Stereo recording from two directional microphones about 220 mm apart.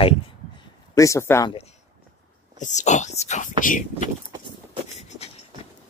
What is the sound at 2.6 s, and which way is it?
Speech, 35° left (ahead or behind).